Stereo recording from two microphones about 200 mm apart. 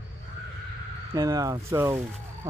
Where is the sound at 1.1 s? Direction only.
15° right (ahead or behind).